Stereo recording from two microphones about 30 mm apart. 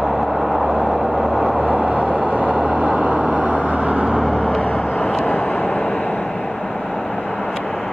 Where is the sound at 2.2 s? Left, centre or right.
Right.